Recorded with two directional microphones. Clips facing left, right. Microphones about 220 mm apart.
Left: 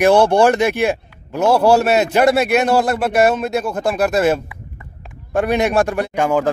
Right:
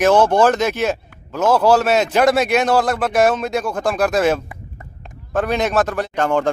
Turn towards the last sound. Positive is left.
turn(degrees=10)  # may be behind; listen again after turning